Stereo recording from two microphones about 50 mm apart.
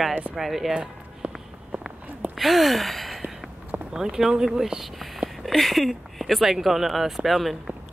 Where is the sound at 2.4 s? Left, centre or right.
Centre.